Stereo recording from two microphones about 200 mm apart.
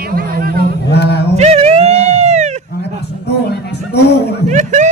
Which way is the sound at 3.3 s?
55° left (ahead or behind).